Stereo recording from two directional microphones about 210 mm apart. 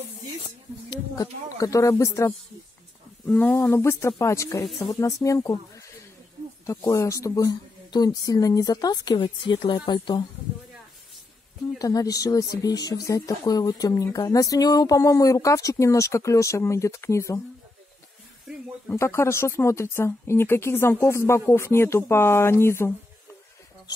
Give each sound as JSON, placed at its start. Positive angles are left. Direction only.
{"t": 0.8, "sound": "speech", "side_deg": 15}
{"t": 11.8, "sound": "speech", "side_deg": 15}
{"t": 18.9, "sound": "speech", "side_deg": 15}